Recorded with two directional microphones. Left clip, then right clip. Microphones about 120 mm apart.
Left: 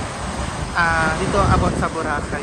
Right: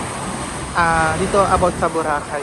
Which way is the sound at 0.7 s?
10° right (ahead or behind).